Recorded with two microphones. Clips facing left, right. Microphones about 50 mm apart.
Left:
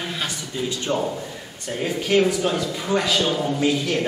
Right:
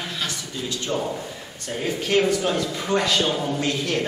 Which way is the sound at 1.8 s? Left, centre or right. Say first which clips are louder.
Left 2 dB; centre.